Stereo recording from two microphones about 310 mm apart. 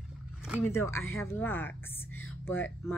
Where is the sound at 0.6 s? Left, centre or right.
Centre.